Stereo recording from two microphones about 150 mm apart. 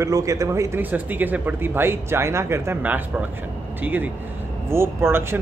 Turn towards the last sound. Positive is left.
turn(degrees=-15)  # may be behind; listen again after turning